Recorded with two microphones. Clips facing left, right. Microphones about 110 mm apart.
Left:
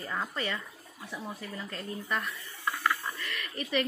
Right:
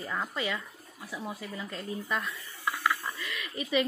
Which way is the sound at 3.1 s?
15° right (ahead or behind).